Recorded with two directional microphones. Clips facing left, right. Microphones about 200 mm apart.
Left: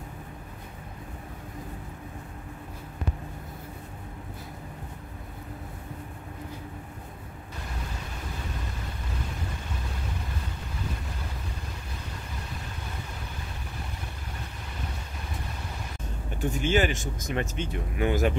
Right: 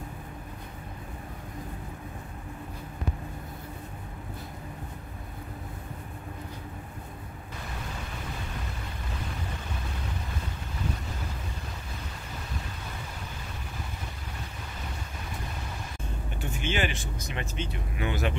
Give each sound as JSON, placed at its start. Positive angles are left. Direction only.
{"t": 16.3, "sound": "speech", "side_deg": 40}